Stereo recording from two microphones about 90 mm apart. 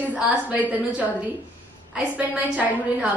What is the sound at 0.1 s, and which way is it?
Speech, 15° right (ahead or behind).